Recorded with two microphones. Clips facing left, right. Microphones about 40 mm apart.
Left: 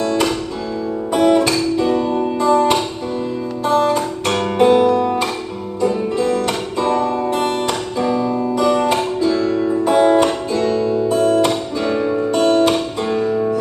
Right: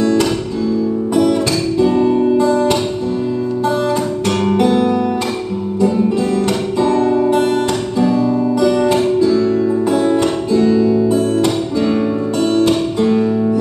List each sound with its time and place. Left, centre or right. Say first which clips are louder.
1.1 s music: left 2 dB; left
2.1 s music: right 2 dB; centre
4.6 s music: left 4 dB; left
6.8 s music: right 4 dB; left
8.9 s music: right 4 dB; left
11.1 s music: even; left
12.4 s music: even; left
13.0 s music: right 7 dB; centre